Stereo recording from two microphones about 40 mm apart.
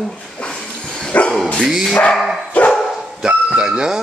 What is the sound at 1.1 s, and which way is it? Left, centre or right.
Dog, left.